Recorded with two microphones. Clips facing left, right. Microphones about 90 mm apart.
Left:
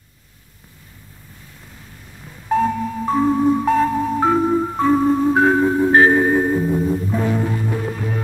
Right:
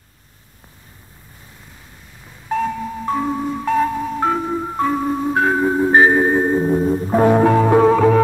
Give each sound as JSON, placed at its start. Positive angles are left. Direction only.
{"t": 2.2, "sound": "marimba", "side_deg": 5}
{"t": 4.6, "sound": "music", "side_deg": 0}
{"t": 5.6, "sound": "marimba", "side_deg": -15}
{"t": 6.6, "sound": "music", "side_deg": -35}
{"t": 7.2, "sound": "music", "side_deg": -55}